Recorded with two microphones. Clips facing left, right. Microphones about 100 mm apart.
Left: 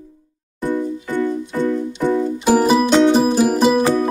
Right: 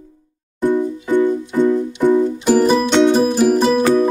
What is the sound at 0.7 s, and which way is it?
Music, 20° right (ahead or behind).